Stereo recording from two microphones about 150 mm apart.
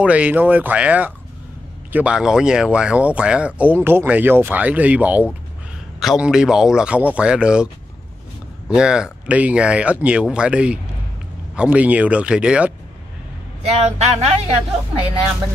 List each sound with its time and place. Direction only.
0.0 s speech: 10° right (ahead or behind)
13.6 s speech: 45° right (ahead or behind)